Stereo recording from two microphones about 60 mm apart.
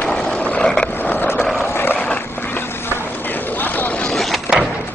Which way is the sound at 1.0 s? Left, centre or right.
Left.